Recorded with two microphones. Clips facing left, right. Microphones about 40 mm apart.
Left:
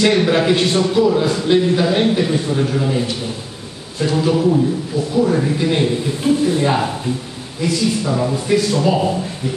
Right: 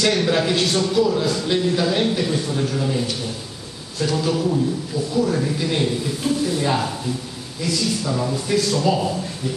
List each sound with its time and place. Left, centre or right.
0.0 s a man's voice: centre